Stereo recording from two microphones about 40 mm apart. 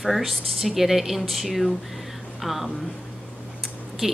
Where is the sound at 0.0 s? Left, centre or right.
Centre.